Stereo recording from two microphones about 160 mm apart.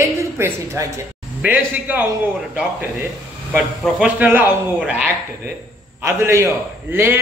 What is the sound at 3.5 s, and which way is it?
A man's voice, 5° right (ahead or behind).